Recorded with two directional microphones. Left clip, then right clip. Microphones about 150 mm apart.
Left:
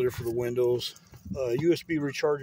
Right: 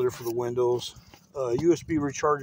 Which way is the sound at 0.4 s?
25° left (ahead or behind).